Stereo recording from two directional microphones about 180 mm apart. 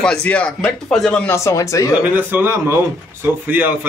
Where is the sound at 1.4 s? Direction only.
15° left (ahead or behind).